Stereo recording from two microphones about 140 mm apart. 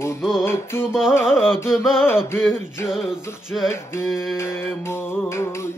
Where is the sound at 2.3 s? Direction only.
15° left (ahead or behind).